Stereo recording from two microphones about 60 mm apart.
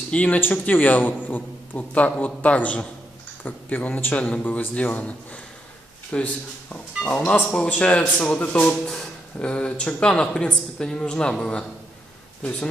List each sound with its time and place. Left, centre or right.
0.1 s a man's voice: left